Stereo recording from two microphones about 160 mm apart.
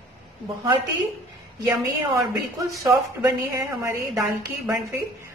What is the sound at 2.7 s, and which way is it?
A woman's voice, 20° right (ahead or behind).